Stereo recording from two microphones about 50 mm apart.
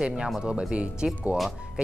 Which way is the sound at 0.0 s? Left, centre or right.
Centre.